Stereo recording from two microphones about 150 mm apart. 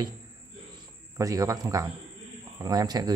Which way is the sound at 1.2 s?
20° right (ahead or behind).